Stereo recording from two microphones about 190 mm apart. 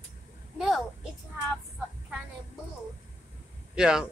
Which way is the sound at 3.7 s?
5° right (ahead or behind).